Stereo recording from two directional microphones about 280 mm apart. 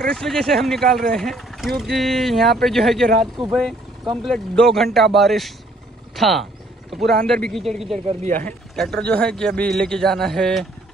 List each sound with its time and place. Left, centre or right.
0.0 s a man's voice: centre
4.0 s speech: centre
4.3 s a man's voice: centre
8.1 s speech: right
8.7 s a man's voice: centre